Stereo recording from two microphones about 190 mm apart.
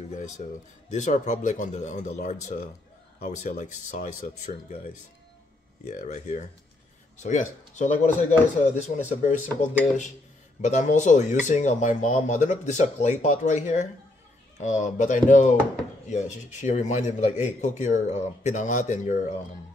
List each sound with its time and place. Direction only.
0.4 s speech: 40° left (ahead or behind)
5.9 s speech: 40° left (ahead or behind)